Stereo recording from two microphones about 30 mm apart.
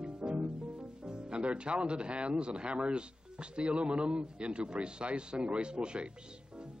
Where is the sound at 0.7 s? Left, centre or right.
Right.